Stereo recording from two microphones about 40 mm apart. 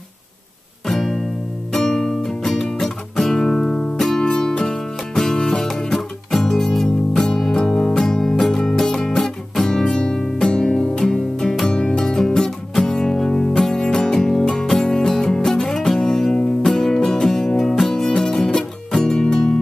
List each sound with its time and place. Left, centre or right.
0.8 s music: centre
5.4 s music: left
5.9 s music: centre